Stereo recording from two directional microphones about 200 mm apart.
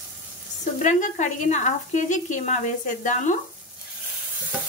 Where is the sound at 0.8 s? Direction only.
35° left (ahead or behind).